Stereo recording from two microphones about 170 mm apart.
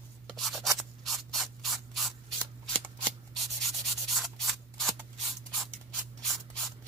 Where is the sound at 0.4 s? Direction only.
Centre (ahead or behind).